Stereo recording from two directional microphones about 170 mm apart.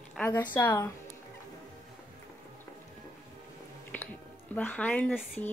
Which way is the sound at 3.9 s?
10° left (ahead or behind).